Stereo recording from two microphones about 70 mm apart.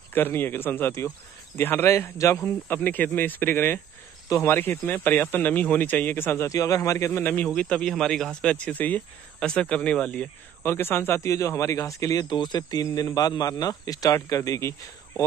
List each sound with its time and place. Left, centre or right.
0.1 s speech: left
6.5 s speech: left
7.5 s speech: centre
9.4 s speech: centre
10.6 s speech: left
11.2 s speech: left
12.2 s speech: left
12.8 s speech: left
14.6 s speech: left